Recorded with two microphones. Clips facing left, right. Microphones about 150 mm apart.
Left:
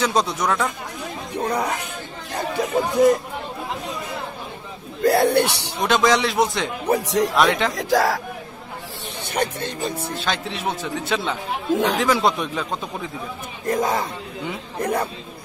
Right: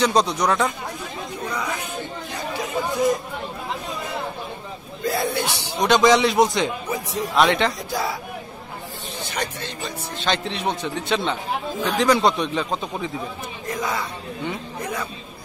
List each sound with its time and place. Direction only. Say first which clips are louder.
0.0 s speech: right 2 dB; 5° left (ahead or behind)
1.5 s chatter: left 4 dB; 55° left (ahead or behind)
5.0 s speech: left 7 dB; 70° left (ahead or behind)
5.8 s speech: right 2 dB; centre (ahead or behind)
6.9 s speech: left 7 dB; 90° left
7.3 s speech: right 4 dB; centre (ahead or behind)
7.7 s speech: left 7 dB; 90° left
9.2 s speech: left 5 dB; 55° left (ahead or behind)
10.1 s speech: right 1 dB; 5° left (ahead or behind)
11.7 s speech: left 8 dB; 85° left
12.0 s speech: right 1 dB; centre (ahead or behind)
13.7 s speech: left 6 dB; 45° left (ahead or behind)
14.8 s speech: left 9 dB; 60° left (ahead or behind)